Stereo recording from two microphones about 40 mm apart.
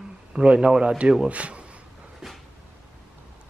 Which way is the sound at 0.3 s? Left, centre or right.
Right.